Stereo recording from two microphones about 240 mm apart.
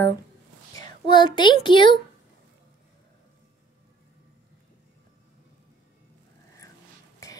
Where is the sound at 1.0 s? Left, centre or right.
Centre.